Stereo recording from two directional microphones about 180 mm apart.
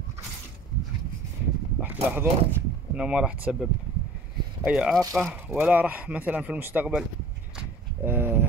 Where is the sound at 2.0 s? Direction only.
10° right (ahead or behind).